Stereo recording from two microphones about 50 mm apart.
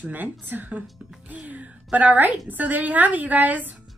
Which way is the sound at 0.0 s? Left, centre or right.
Right.